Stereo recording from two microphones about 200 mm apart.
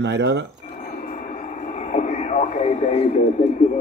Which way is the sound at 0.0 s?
60° right (ahead or behind).